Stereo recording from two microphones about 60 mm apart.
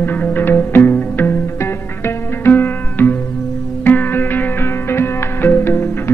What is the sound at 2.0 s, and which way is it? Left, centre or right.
Music, left.